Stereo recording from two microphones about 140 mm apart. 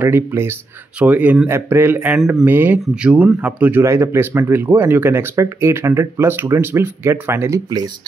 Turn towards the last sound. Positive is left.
turn(degrees=-25)  # may be behind; listen again after turning